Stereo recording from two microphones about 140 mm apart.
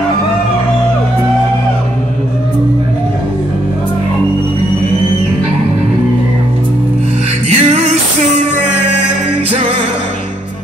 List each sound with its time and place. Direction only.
7.4 s music: 50° right (ahead or behind)